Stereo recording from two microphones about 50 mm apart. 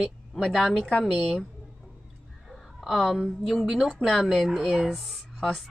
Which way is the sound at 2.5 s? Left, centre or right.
Centre.